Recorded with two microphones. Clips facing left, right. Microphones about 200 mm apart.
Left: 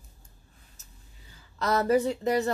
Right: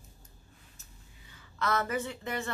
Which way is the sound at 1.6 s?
40° left (ahead or behind).